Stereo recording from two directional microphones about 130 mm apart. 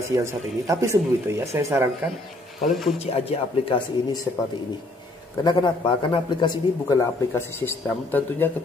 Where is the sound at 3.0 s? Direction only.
50° left (ahead or behind).